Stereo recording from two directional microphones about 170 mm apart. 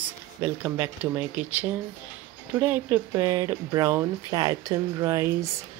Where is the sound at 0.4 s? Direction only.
15° right (ahead or behind).